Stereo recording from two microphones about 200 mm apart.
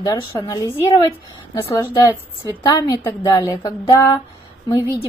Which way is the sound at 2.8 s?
20° left (ahead or behind).